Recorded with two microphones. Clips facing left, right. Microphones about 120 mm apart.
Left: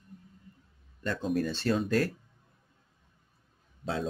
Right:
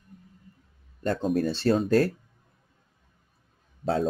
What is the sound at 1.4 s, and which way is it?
Speech, 35° right (ahead or behind).